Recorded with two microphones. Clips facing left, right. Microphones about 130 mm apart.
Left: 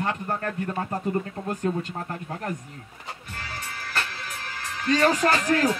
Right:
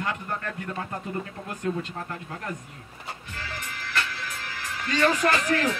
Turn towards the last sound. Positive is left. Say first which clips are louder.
# left 2 dB
turn(degrees=35)  # may be behind; listen again after turning